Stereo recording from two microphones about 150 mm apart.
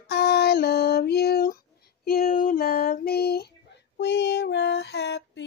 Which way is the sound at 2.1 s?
75° left (ahead or behind).